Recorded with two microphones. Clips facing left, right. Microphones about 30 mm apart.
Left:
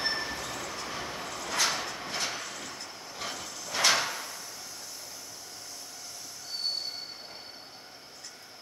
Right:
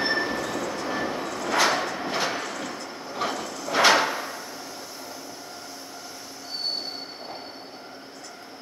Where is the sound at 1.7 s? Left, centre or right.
Right.